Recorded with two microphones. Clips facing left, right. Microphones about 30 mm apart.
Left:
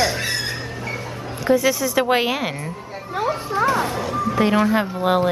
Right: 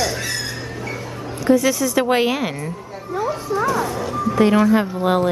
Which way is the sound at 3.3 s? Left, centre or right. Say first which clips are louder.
Left 1 dB; left.